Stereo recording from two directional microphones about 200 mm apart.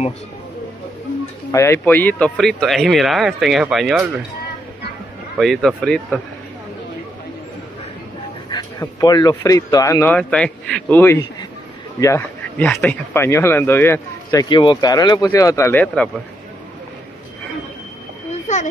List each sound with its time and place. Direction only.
1.5 s speech: 15° left (ahead or behind); by 4.2 s centre (ahead or behind)
5.4 s speech: centre (ahead or behind)
8.5 s speech: 20° left (ahead or behind)